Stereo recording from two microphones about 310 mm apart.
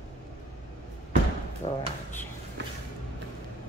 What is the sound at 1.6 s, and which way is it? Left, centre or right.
Speech, centre.